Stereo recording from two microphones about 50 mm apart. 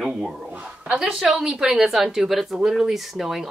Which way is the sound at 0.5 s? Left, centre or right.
Right.